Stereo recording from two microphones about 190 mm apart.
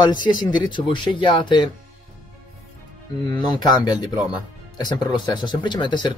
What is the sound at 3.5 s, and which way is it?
Speech, 20° left (ahead or behind).